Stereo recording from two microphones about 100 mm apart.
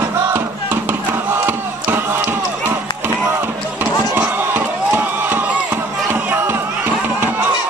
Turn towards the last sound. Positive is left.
turn(degrees=-20)  # may be behind; listen again after turning